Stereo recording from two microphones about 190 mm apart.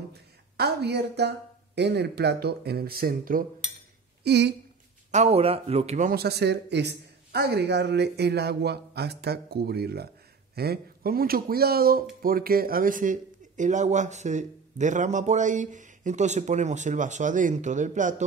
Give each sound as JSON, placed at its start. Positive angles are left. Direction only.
{"t": 0.1, "sound": "a sound", "side_deg": -60}
{"t": 1.8, "sound": "speech", "side_deg": -60}
{"t": 4.2, "sound": "speech", "side_deg": -60}
{"t": 5.1, "sound": "speech", "side_deg": -35}
{"t": 6.1, "sound": "speech", "side_deg": -60}